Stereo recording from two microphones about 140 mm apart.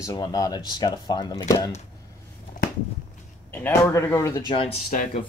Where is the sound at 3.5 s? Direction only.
15° left (ahead or behind).